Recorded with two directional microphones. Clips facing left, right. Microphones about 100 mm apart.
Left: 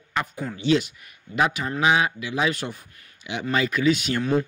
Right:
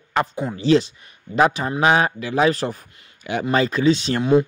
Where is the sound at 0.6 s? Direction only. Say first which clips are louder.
Right 4 dB; 35° right (ahead or behind).